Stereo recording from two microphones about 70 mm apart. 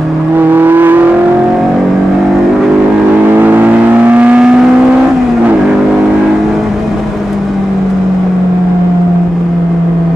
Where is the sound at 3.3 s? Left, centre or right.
Right.